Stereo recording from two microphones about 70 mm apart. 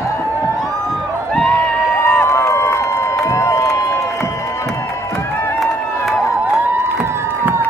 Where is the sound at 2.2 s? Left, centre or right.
Left.